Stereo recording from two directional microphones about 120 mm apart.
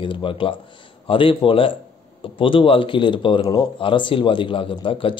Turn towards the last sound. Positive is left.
turn(degrees=45)  # may be behind; listen again after turning